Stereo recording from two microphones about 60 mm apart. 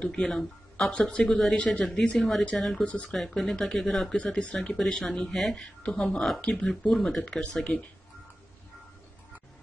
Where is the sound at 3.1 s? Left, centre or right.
Centre.